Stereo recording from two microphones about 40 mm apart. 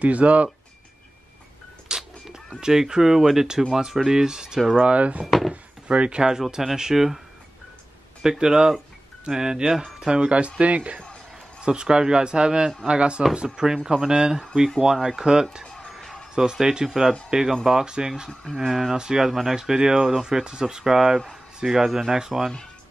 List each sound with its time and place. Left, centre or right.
0.0 s speech: right
1.9 s music: centre
2.6 s speech: centre
4.7 s speech: right
5.2 s speech: centre
5.5 s speech: right
6.6 s speech: centre
8.2 s speech: centre; by 11.0 s right
11.6 s a man's voice: right
15.6 s a sound: centre
15.9 s a sound: centre
16.3 s speech: centre
18.4 s speech: centre
18.7 s speech: centre